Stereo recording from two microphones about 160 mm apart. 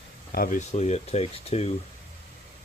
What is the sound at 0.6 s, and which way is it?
Speech, 45° left (ahead or behind).